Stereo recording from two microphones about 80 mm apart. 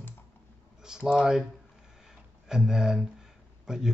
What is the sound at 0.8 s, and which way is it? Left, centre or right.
Speech, centre.